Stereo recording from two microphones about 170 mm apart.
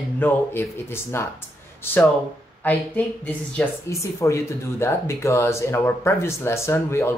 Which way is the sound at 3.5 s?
15° left (ahead or behind).